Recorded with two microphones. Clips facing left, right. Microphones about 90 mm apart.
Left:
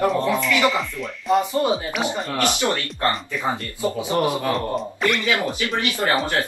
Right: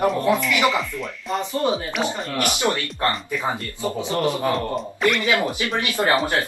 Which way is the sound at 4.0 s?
15° left (ahead or behind).